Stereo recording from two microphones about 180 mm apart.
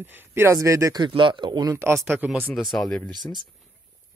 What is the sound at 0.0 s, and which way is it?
Speech, 10° right (ahead or behind).